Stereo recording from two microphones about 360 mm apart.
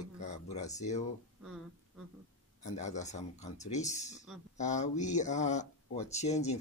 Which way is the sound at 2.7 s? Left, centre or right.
Centre.